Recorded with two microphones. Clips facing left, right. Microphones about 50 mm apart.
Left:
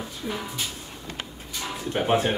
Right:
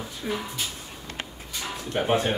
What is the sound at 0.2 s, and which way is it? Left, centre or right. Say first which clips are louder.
Speech: right 2 dB; right.